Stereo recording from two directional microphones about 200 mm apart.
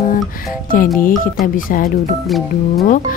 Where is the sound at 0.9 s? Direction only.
45° left (ahead or behind).